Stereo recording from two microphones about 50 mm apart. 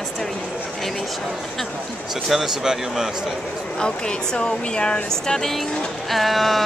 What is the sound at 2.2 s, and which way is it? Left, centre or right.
Speech, centre.